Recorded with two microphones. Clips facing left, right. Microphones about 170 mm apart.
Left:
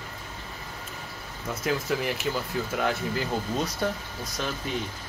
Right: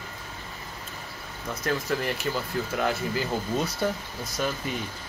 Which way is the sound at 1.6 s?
Centre (ahead or behind).